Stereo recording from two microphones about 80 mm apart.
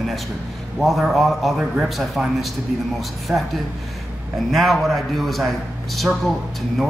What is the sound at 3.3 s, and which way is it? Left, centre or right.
Speech, right.